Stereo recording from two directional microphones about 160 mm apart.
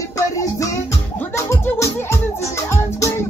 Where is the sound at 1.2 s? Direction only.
15° left (ahead or behind).